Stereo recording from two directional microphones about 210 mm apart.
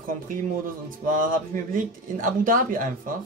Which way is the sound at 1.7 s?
40° right (ahead or behind).